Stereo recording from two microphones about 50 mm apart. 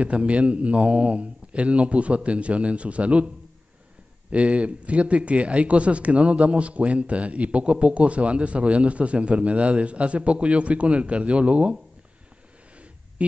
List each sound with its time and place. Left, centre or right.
0.0 s speech: right
4.3 s speech: right